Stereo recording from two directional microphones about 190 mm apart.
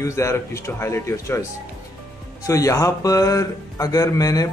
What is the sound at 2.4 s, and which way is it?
A man's voice, 15° left (ahead or behind).